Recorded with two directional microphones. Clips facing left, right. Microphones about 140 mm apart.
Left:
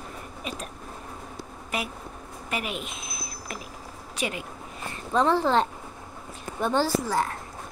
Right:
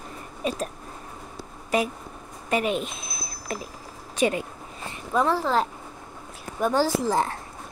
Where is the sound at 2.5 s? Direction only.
35° right (ahead or behind).